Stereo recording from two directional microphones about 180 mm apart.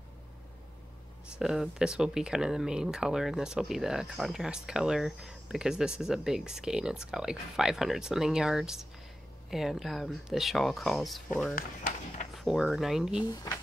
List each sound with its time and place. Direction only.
1.3 s speech: centre (ahead or behind)
13.2 s speech: 20° left (ahead or behind)